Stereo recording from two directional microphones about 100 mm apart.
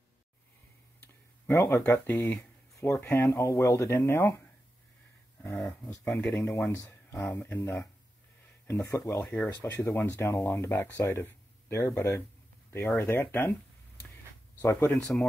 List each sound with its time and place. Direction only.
1.5 s speech: 30° left (ahead or behind)
2.7 s speech: 30° left (ahead or behind)
5.6 s speech: 30° left (ahead or behind)
9.2 s speech: 10° left (ahead or behind)
9.7 s speech: 20° left (ahead or behind)
14.6 s speech: 20° left (ahead or behind)
15.0 s speech: 5° left (ahead or behind)